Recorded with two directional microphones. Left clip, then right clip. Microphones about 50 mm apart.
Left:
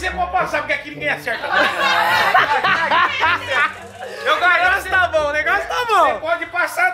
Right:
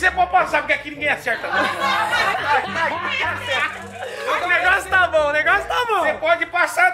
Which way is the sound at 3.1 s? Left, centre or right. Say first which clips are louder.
Left 4 dB; right.